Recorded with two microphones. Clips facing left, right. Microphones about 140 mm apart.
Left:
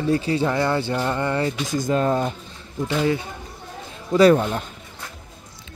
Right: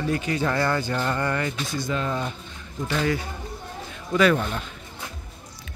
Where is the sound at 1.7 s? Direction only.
40° left (ahead or behind).